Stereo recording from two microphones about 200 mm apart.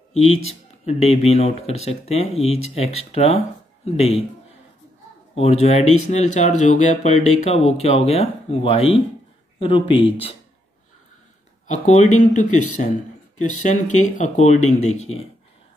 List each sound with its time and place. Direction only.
0.3 s speech: 30° left (ahead or behind)
5.3 s speech: 30° left (ahead or behind)
11.6 s speech: 35° left (ahead or behind)